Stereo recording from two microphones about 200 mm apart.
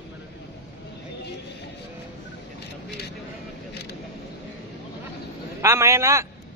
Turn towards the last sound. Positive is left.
turn(degrees=-15)  # may be behind; listen again after turning